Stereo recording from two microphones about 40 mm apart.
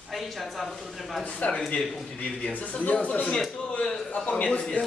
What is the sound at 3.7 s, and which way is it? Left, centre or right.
Speech, left.